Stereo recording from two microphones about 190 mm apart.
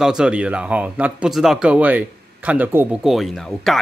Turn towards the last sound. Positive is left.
turn(degrees=0)  # may be behind; listen again after turning